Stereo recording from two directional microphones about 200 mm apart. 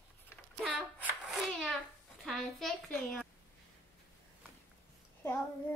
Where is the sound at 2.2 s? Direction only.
5° left (ahead or behind).